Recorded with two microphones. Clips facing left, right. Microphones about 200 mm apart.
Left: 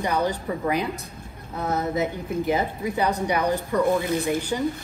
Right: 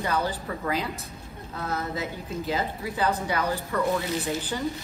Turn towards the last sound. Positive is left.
turn(degrees=15)  # may be behind; listen again after turning